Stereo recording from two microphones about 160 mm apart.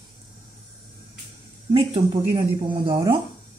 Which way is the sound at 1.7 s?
30° right (ahead or behind).